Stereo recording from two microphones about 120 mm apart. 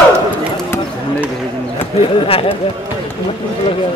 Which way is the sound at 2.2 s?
50° left (ahead or behind).